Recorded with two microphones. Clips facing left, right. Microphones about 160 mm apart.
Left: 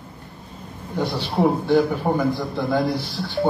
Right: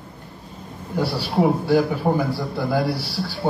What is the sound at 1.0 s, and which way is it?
A man's voice, 10° right (ahead or behind).